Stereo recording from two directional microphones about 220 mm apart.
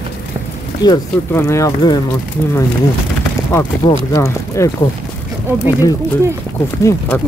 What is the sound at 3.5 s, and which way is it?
Speech, 15° left (ahead or behind).